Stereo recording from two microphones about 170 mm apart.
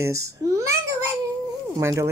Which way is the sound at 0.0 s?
20° right (ahead or behind).